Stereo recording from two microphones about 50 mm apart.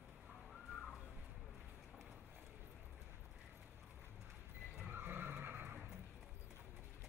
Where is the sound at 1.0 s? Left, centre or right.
Left.